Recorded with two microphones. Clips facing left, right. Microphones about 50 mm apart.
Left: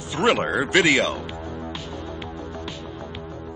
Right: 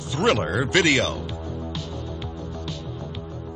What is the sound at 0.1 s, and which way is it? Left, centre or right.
A man's voice, centre.